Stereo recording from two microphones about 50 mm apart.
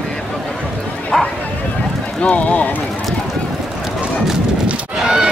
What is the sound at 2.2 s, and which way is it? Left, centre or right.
Speech, left.